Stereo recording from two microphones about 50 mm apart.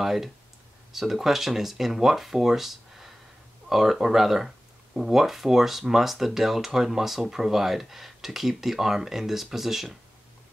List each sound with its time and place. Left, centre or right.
0.0 s speech: centre